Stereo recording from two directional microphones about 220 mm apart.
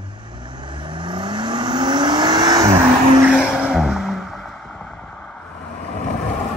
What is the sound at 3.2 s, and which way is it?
Music, centre (ahead or behind).